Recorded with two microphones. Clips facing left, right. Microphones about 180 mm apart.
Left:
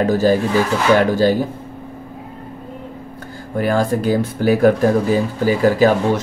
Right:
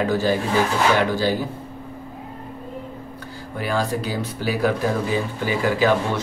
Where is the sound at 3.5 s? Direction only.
50° left (ahead or behind).